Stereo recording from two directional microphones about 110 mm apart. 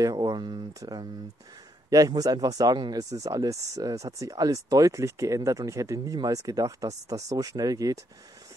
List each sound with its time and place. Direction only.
0.0 s speech: 40° right (ahead or behind)